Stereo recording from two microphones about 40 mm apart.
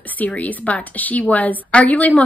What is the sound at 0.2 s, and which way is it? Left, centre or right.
A woman's voice, left.